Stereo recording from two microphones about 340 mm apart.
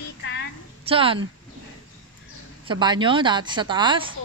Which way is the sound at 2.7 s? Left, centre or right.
Centre.